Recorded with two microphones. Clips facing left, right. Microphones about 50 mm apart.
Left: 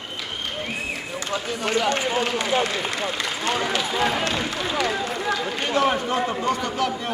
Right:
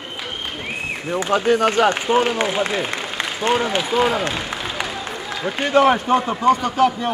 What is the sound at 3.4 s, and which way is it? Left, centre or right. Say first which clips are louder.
Speech: right 6 dB; right.